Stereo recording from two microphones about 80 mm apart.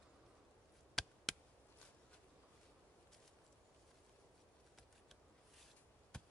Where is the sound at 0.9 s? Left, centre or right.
Centre.